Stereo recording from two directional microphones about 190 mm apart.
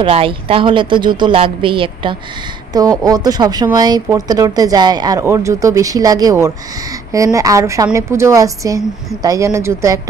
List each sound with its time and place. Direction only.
0.0 s a woman's voice: 30° right (ahead or behind)